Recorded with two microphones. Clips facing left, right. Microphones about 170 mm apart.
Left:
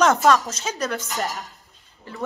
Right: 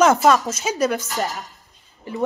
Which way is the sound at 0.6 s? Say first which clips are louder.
Right 6 dB; 15° right (ahead or behind).